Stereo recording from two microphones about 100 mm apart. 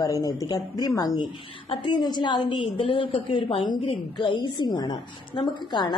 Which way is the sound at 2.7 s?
60° left (ahead or behind).